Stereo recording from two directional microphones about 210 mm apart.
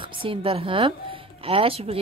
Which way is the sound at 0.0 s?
25° right (ahead or behind).